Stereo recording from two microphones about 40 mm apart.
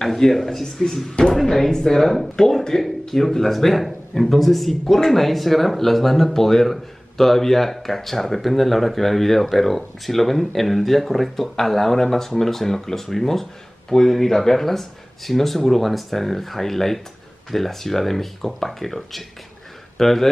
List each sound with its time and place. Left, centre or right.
0.0 s speech: centre